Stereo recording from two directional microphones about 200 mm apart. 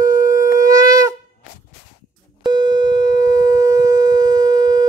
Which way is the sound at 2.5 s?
20° right (ahead or behind).